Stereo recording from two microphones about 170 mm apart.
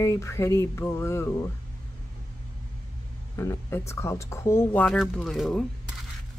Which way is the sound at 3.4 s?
15° left (ahead or behind).